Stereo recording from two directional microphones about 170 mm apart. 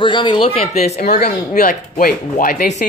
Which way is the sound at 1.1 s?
55° left (ahead or behind).